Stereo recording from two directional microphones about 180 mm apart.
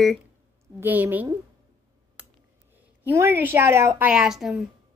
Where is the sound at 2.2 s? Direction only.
5° right (ahead or behind).